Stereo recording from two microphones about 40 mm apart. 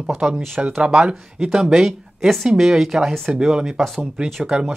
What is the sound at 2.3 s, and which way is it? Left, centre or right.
Speech, centre.